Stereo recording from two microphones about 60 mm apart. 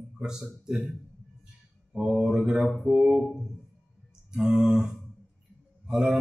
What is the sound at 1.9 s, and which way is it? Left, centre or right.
Speech, centre.